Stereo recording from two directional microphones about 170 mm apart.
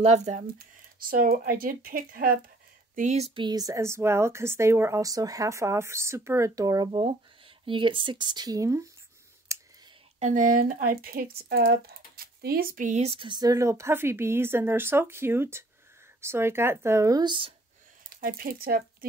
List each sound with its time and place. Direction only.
0.0 s speech: 40° right (ahead or behind)
1.0 s speech: 55° right (ahead or behind)
3.0 s speech: 40° right (ahead or behind)
3.4 s a woman's voice: 20° right (ahead or behind)
9.5 s whispering: 15° right (ahead or behind)
10.1 s a woman's voice: 45° right (ahead or behind); by 17.6 s 30° right (ahead or behind)
18.1 s speech: 55° right (ahead or behind)